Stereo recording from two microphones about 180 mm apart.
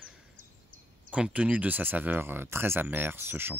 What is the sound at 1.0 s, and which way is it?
Speech, 5° right (ahead or behind).